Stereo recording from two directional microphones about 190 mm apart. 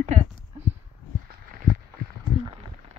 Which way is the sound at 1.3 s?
50° right (ahead or behind).